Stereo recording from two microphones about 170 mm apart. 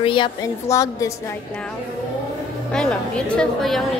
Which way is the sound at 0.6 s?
20° left (ahead or behind).